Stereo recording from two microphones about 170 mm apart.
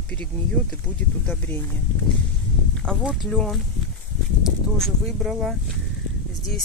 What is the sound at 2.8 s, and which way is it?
Speech, centre (ahead or behind).